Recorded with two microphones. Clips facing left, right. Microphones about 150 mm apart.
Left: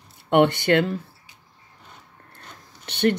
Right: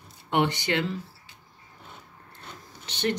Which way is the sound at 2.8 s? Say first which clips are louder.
Left 7 dB; 55° left (ahead or behind).